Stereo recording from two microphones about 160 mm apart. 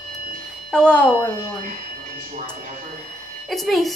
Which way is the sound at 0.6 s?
5° left (ahead or behind).